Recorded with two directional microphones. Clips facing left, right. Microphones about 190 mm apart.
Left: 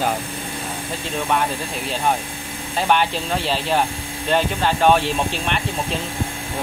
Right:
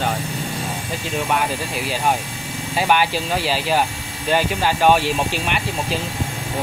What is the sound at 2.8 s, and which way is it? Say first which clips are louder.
Speech: right 1 dB; 5° right (ahead or behind).